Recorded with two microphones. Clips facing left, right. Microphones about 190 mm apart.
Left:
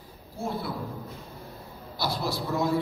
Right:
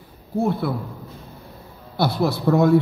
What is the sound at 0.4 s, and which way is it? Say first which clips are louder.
Speech: right 10 dB; 60° right (ahead or behind).